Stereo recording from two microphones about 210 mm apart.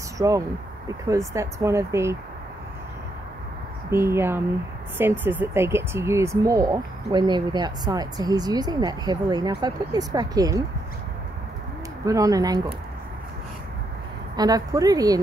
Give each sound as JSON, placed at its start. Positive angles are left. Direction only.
{"t": 0.2, "sound": "speech", "side_deg": -15}
{"t": 3.9, "sound": "speech", "side_deg": -10}
{"t": 12.1, "sound": "speech", "side_deg": -15}
{"t": 14.3, "sound": "speech", "side_deg": -20}